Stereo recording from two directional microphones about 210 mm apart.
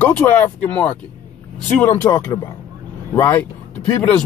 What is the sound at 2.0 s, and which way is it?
Speech, 15° left (ahead or behind).